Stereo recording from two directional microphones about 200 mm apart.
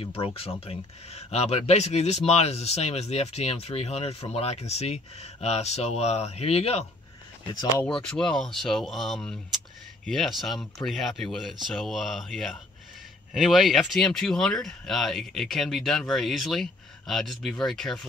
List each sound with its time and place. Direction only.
0.0 s speech: 30° left (ahead or behind)
7.8 s speech: 5° left (ahead or behind)